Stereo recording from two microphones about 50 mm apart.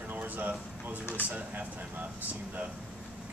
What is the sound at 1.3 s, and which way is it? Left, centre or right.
Speech, right.